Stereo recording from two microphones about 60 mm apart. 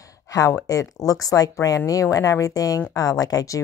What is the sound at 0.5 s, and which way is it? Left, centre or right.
Speech, left.